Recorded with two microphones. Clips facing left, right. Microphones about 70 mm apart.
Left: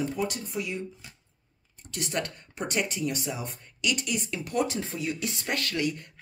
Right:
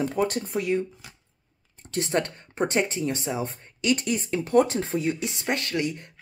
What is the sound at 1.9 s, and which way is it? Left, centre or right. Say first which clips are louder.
Speech: right 6 dB; right.